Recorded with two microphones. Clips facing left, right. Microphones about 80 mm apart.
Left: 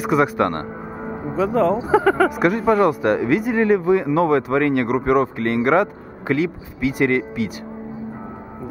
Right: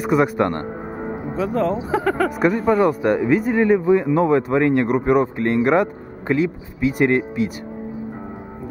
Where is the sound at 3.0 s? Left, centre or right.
Centre.